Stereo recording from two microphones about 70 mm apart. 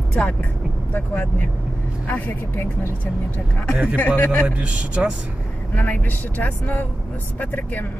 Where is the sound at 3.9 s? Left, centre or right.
Left.